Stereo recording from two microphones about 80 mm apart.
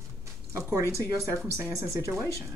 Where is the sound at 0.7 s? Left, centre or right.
Right.